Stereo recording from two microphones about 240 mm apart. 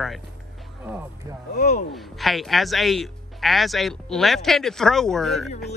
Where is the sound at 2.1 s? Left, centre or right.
Centre.